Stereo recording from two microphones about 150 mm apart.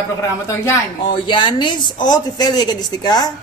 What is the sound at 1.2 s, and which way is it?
A woman's voice, 30° left (ahead or behind).